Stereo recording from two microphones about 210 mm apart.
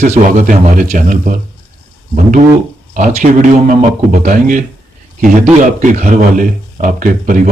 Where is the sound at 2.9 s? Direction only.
35° right (ahead or behind).